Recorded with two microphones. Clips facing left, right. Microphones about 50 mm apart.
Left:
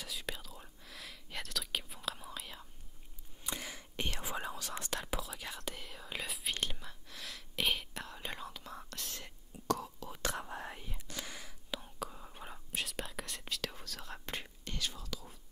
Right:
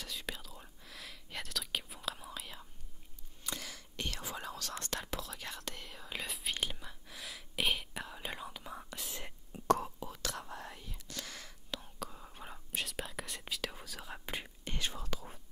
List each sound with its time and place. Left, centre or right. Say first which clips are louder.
0.0 s whispering: even; centre
3.4 s whispering: left 1 dB; centre
9.7 s whispering: right 5 dB; right
10.5 s whispering: left 2 dB; left; by 14.7 s centre
14.7 s whispering: right 2 dB; right